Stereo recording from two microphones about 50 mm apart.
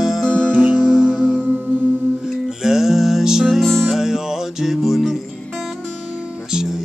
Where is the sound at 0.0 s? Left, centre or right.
Centre.